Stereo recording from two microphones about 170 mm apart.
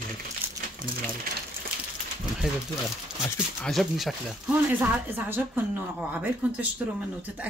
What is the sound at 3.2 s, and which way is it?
Speech, 15° left (ahead or behind).